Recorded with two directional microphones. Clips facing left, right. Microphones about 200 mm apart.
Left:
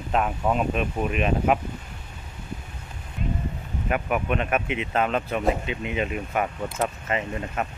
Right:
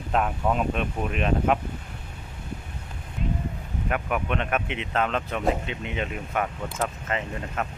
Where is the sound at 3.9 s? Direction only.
5° left (ahead or behind).